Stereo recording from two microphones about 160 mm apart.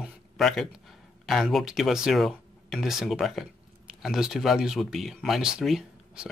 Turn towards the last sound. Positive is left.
turn(degrees=-5)  # may be behind; listen again after turning